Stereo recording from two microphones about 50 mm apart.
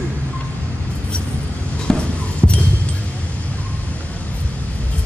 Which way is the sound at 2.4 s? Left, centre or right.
Right.